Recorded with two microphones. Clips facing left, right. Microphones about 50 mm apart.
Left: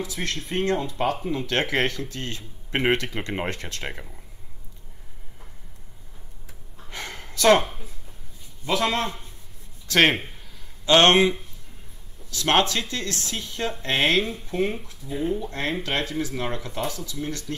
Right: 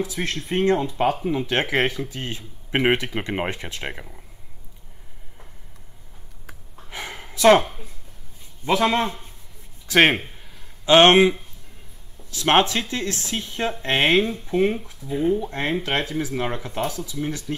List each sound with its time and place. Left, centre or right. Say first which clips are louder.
0.0 s speech: right 3 dB; right
6.9 s a sound: right 2 dB; centre
8.6 s speech: right 4 dB; right
14.9 s speech: right 4 dB; centre
15.2 s speech: right 4 dB; right